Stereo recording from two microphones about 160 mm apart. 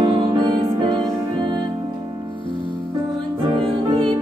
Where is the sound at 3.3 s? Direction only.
35° right (ahead or behind).